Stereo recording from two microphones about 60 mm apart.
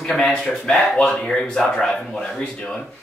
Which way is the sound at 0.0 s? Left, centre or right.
Centre.